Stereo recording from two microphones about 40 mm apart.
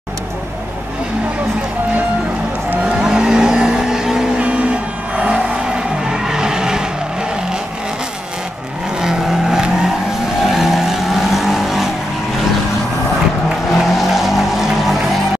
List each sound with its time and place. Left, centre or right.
2.8 s vehicle: centre
4.4 s vehicle: right
5.7 s skidding: centre
9.0 s vehicle: centre
13.7 s vehicle: centre